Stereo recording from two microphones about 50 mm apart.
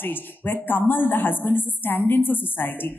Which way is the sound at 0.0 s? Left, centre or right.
Left.